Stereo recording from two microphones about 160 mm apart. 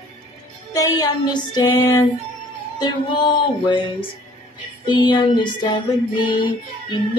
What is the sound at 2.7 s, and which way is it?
Music, 25° left (ahead or behind).